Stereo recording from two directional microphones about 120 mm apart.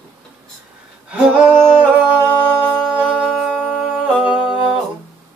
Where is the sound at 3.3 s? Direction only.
5° left (ahead or behind).